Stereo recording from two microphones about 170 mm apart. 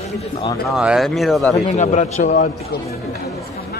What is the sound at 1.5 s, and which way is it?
Speech, 40° left (ahead or behind).